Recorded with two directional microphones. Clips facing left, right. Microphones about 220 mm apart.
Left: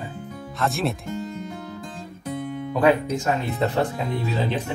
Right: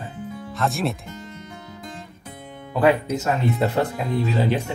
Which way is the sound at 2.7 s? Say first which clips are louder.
Right 1 dB; 5° right (ahead or behind).